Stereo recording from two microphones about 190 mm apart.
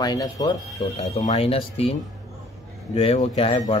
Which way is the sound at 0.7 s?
35° left (ahead or behind).